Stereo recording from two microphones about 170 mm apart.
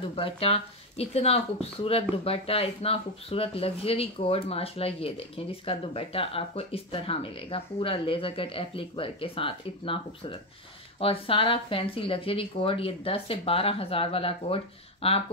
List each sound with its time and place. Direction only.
0.1 s speech: 35° left (ahead or behind)